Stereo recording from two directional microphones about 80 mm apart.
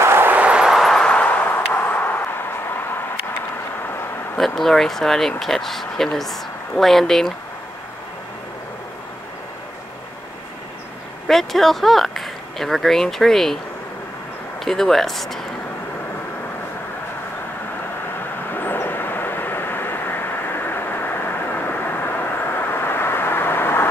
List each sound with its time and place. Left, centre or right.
0.0 s vehicle: right; by 1.0 s centre
1.0 s vehicle: centre
4.6 s speech: centre
11.2 s speech: centre
14.6 s speech: centre
18.5 s vehicle: left